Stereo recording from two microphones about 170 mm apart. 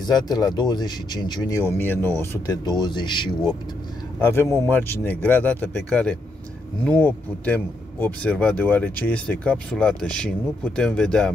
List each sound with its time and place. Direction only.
0.0 s a man's voice: 25° left (ahead or behind)
4.6 s a man's voice: 10° left (ahead or behind)